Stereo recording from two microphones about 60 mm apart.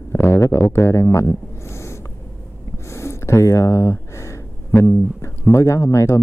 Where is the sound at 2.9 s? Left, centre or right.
Left.